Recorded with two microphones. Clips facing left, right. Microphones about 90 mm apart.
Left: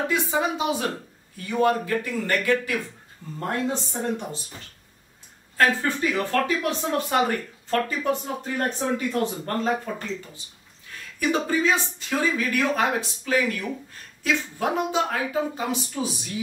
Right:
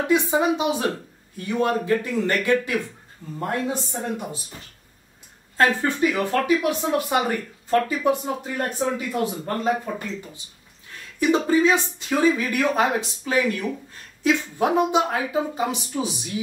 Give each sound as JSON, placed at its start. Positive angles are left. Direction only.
{"t": 0.1, "sound": "speech", "side_deg": -20}
{"t": 3.3, "sound": "speech", "side_deg": -10}
{"t": 5.6, "sound": "speech", "side_deg": -20}
{"t": 11.1, "sound": "speech", "side_deg": -20}